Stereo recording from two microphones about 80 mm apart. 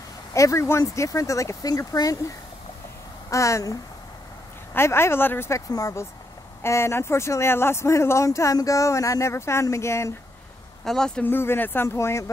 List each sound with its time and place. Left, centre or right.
0.3 s speech: left
4.7 s speech: left
5.7 s speech: left
10.9 s speech: centre
11.2 s speech: left